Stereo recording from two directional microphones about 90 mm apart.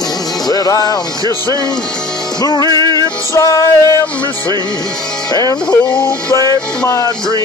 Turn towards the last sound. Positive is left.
turn(degrees=35)  # may be behind; listen again after turning